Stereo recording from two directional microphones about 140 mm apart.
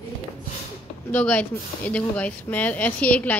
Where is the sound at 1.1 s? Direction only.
10° left (ahead or behind).